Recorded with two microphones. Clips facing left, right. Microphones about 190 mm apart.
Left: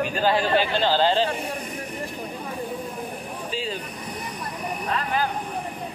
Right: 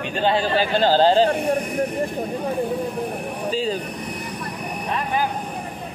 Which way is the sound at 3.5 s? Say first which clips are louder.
Right 7 dB; 40° right (ahead or behind).